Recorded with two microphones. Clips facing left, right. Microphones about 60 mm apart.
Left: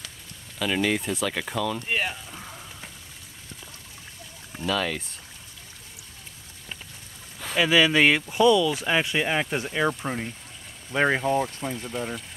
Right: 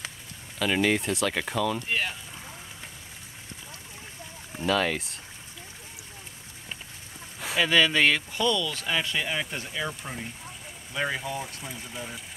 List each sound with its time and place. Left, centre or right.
0.6 s speech: centre
1.9 s a sound: centre
4.6 s speech: centre
7.5 s speech: centre; by 11.4 s left
11.7 s speech: centre